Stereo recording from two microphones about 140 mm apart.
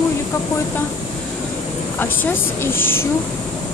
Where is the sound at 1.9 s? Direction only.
15° left (ahead or behind).